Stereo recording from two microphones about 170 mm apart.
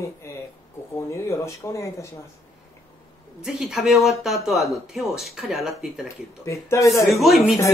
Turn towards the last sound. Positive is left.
turn(degrees=0)  # may be behind; listen again after turning